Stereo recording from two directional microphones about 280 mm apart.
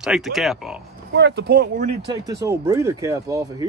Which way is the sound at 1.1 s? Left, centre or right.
Right.